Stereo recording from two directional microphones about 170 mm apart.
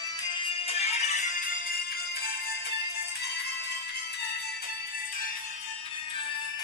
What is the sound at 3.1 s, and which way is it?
Music, 75° left (ahead or behind).